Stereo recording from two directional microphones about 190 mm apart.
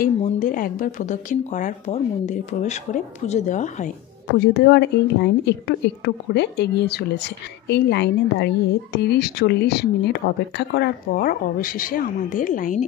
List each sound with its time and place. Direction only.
0.0 s a woman's voice: 45° left (ahead or behind)
4.4 s a woman's voice: 60° left (ahead or behind); by 12.8 s 45° left (ahead or behind)